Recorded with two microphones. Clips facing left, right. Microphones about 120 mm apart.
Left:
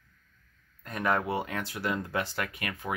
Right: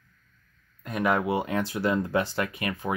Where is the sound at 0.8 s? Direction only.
10° right (ahead or behind).